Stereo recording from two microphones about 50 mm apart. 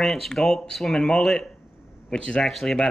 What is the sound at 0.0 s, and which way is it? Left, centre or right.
Speech, centre.